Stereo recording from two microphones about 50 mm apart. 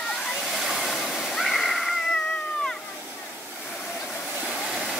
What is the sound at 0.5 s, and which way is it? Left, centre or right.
Waterfall, centre.